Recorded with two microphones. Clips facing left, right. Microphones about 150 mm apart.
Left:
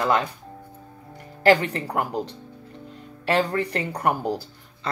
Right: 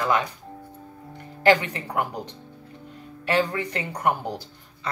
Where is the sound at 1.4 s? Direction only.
35° left (ahead or behind).